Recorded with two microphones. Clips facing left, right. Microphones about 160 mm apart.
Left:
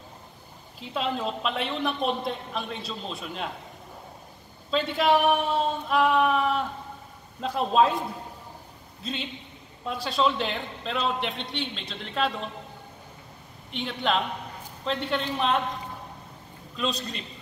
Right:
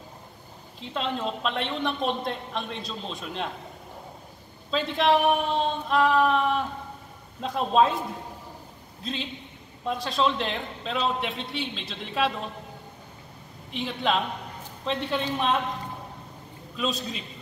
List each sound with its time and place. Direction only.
0.7 s a man's voice: 5° left (ahead or behind)
4.6 s a man's voice: centre (ahead or behind)
9.0 s a man's voice: centre (ahead or behind)
13.7 s a man's voice: centre (ahead or behind)
16.7 s a man's voice: 5° right (ahead or behind)